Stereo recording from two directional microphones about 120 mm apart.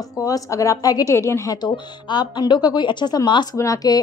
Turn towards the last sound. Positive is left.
turn(degrees=30)  # may be behind; listen again after turning